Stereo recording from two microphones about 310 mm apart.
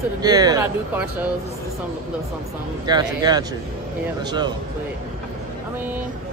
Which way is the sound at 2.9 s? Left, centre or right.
Centre.